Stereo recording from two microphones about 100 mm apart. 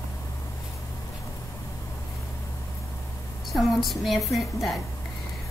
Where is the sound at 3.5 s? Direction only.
Centre (ahead or behind).